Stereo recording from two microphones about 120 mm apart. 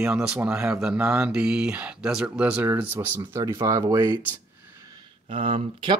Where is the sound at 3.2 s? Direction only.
30° right (ahead or behind).